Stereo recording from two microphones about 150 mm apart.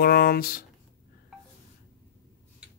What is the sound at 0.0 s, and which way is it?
Speech, 90° left.